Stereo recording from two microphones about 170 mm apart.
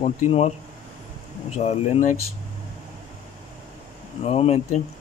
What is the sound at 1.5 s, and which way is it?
Speech, 40° left (ahead or behind).